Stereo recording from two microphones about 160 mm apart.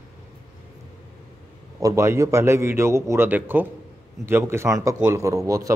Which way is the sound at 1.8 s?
20° right (ahead or behind).